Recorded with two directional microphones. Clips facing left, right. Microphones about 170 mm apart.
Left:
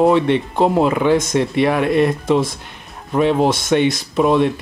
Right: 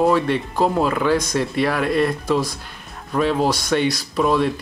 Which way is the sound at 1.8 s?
Centre (ahead or behind).